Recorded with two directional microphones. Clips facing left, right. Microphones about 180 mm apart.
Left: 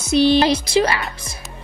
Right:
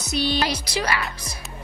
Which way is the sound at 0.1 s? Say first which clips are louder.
Left 10 dB; 25° left (ahead or behind).